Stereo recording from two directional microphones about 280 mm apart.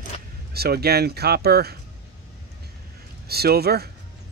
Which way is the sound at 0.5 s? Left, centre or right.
Right.